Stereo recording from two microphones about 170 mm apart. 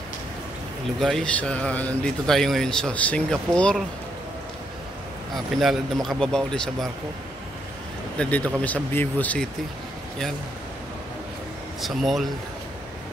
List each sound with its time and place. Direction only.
0.9 s a man's voice: centre (ahead or behind)
5.3 s a man's voice: centre (ahead or behind)
8.2 s speech: 10° left (ahead or behind)
11.8 s a man's voice: centre (ahead or behind)